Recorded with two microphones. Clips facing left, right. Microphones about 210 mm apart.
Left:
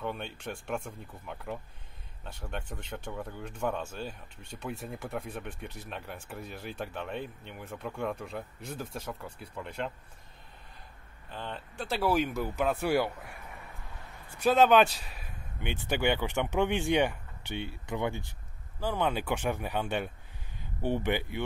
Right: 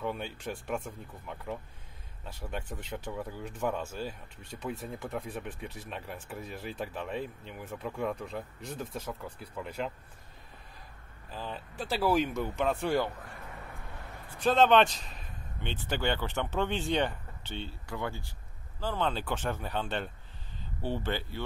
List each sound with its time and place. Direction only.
0.0 s speech: 5° right (ahead or behind)
11.2 s speech: 5° right (ahead or behind)
14.4 s speech: 5° left (ahead or behind)